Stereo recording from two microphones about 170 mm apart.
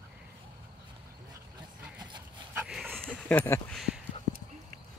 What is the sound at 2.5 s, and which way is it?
Dog, 5° right (ahead or behind).